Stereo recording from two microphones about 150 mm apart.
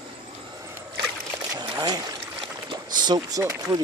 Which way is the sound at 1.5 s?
25° right (ahead or behind).